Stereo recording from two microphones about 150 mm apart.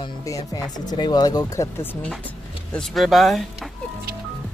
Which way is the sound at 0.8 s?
30° left (ahead or behind).